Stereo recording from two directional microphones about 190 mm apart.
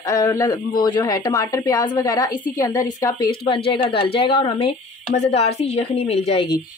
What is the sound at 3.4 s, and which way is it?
Speech, 30° left (ahead or behind).